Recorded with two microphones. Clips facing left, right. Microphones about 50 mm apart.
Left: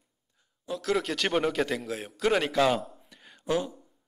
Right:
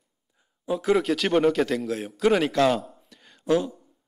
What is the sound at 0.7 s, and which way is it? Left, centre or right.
Speech, centre.